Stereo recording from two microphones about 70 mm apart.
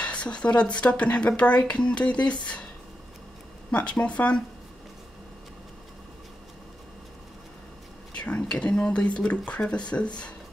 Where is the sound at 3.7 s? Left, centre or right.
Centre.